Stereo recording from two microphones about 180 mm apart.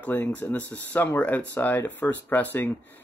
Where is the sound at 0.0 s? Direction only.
10° left (ahead or behind).